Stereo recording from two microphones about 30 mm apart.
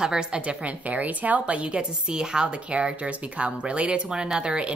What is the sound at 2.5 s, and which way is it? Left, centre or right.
Speech, right.